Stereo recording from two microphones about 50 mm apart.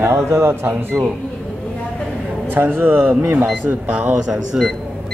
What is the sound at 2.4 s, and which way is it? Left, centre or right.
Speech, right.